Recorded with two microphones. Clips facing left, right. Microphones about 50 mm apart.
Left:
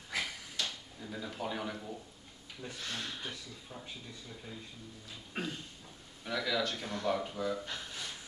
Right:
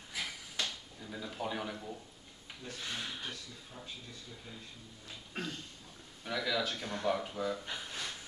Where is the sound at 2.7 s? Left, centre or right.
Centre.